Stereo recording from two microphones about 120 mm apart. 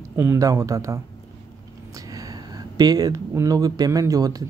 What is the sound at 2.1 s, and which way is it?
Speech, 30° right (ahead or behind).